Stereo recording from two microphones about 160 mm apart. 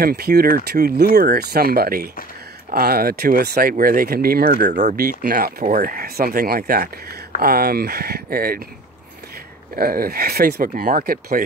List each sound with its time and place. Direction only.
0.0 s speech: 75° right (ahead or behind)
4.9 s speech: 70° right (ahead or behind)
9.8 s speech: 70° right (ahead or behind)